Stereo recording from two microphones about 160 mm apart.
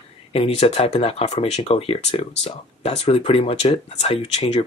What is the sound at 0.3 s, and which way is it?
Speech, 40° left (ahead or behind).